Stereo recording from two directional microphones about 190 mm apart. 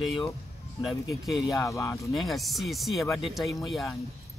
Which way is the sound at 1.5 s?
15° left (ahead or behind).